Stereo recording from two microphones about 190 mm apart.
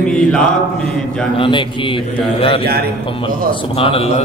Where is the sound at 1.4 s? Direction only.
25° left (ahead or behind).